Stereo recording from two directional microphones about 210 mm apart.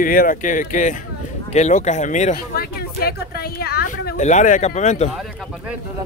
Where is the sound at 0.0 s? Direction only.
40° left (ahead or behind).